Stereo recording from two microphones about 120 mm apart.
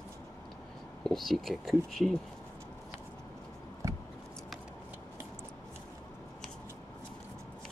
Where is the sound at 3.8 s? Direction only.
25° right (ahead or behind).